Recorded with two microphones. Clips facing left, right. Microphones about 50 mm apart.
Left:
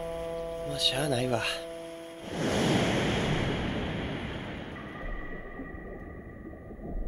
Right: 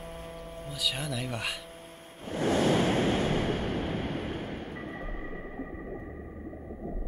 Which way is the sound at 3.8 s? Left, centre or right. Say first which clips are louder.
Right 1 dB; left.